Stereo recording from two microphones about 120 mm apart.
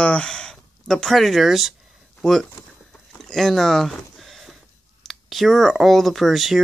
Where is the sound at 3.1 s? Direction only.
5° left (ahead or behind).